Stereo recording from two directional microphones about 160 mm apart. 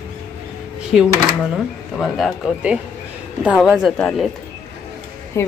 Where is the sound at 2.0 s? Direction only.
Centre (ahead or behind).